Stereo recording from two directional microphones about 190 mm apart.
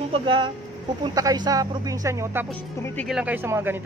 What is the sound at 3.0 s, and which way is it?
Speech, centre (ahead or behind).